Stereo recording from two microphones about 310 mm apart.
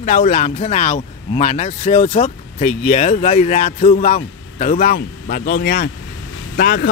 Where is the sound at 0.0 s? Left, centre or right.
Left.